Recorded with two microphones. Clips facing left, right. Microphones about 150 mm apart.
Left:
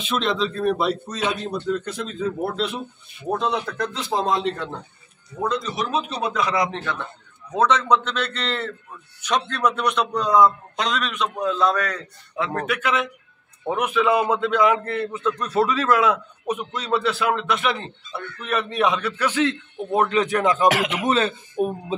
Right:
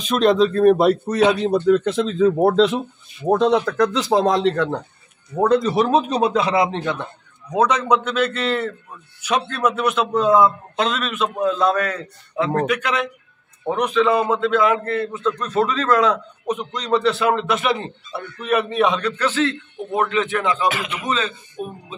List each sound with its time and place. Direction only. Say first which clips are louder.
0.0 s speech: right 8 dB; 45° right (ahead or behind); by 4.8 s 85° right
5.4 s a man's voice: right 9 dB; 60° right (ahead or behind); by 19.5 s 15° left (ahead or behind)
19.9 s a man's voice: left 1 dB; 35° left (ahead or behind)
20.6 s speech: left 3 dB; 90° left
21.1 s speech: left 2 dB; 55° left (ahead or behind)